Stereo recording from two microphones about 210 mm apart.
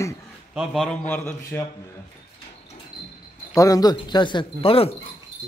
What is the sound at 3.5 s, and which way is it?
Speech, 15° left (ahead or behind).